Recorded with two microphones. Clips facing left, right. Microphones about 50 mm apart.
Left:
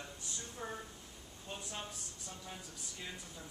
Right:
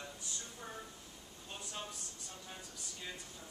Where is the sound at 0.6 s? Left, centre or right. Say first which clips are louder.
Left 6 dB; centre.